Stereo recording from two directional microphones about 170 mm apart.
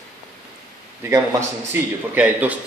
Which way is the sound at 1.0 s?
15° right (ahead or behind).